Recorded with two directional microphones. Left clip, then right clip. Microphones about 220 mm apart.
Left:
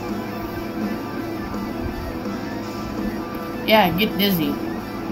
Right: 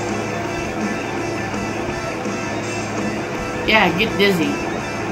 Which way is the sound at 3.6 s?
30° left (ahead or behind).